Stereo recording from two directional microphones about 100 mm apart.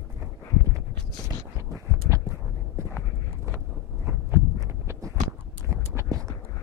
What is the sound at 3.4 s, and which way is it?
Wind noise, 25° right (ahead or behind).